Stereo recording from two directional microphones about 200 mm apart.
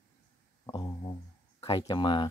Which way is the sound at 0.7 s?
20° left (ahead or behind).